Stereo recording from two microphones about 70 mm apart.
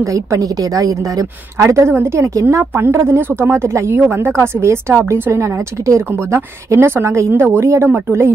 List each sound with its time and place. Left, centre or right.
0.0 s a woman's voice: right
7.6 s a woman's voice: right